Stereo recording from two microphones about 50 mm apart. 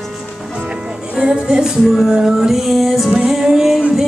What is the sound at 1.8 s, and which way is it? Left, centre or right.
Music, centre.